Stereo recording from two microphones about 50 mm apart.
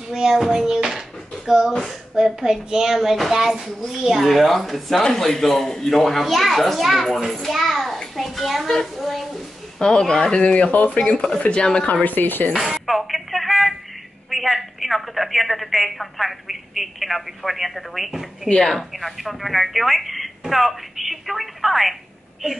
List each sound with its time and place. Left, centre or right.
0.1 s a child's voice: centre
9.8 s speech: centre
10.4 s speech: left
11.0 s speech: centre; by 12.5 s left
12.5 s music: centre
14.3 s a woman's voice: centre
18.5 s speech: centre
18.9 s a woman's voice: centre